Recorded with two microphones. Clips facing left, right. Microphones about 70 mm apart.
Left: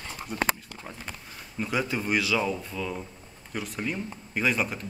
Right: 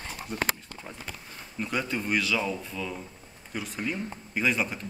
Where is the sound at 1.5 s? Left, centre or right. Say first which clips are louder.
Left 2 dB; centre.